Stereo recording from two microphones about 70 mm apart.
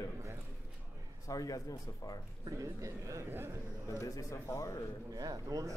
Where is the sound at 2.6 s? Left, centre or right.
Right.